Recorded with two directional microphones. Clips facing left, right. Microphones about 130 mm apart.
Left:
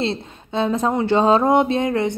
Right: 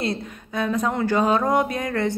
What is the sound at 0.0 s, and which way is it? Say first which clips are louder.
A woman's voice: left 3 dB; 25° left (ahead or behind).